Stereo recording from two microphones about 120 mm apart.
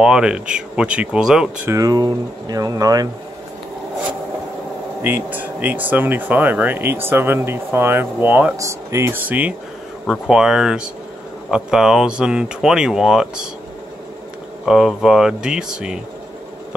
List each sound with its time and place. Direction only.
0.0 s speech: 5° right (ahead or behind)
1.7 s speech: 30° right (ahead or behind)
5.0 s speech: 15° right (ahead or behind)
8.5 s speech: 25° right (ahead or behind)
10.0 s speech: centre (ahead or behind)
14.7 s speech: 5° right (ahead or behind)